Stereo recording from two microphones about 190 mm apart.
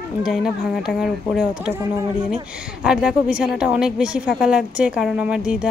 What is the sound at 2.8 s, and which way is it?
A woman's voice, 5° right (ahead or behind).